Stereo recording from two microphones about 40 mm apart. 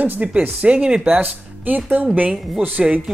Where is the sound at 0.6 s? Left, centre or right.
Right.